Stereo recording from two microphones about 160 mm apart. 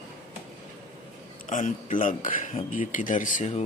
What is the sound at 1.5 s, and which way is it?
Speech, 50° left (ahead or behind).